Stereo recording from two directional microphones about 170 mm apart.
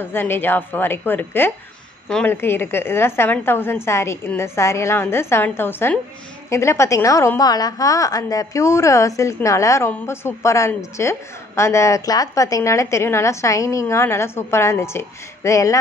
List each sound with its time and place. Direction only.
0.0 s a woman's voice: 10° left (ahead or behind)